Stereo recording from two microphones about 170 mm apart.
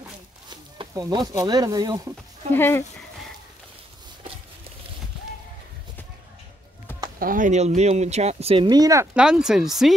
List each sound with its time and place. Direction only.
0.5 s speech: 25° right (ahead or behind)
2.5 s speech: 15° left (ahead or behind)
7.2 s speech: 55° right (ahead or behind); by 9.1 s 20° right (ahead or behind)
9.1 s speech: 5° right (ahead or behind)